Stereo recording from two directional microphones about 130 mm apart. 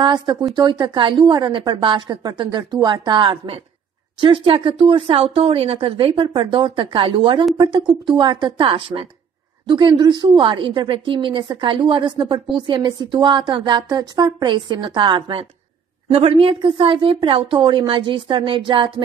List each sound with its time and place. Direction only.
0.0 s a woman's voice: 35° right (ahead or behind)